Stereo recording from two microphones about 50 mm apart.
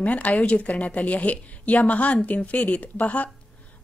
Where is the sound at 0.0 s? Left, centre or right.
Left.